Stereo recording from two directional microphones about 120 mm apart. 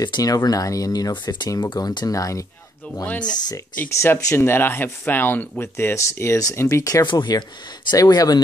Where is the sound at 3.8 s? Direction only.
20° left (ahead or behind).